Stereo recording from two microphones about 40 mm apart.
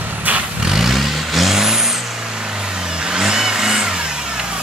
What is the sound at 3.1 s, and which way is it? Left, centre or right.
Vehicle, centre.